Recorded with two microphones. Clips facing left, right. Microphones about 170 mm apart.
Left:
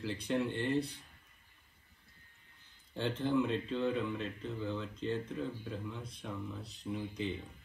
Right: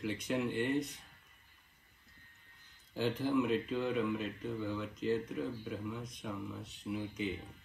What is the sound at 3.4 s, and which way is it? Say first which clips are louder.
Speech: even; 10° right (ahead or behind).